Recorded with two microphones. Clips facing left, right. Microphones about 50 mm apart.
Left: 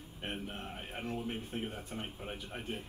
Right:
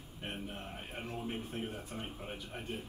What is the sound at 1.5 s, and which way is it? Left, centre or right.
Speech, left.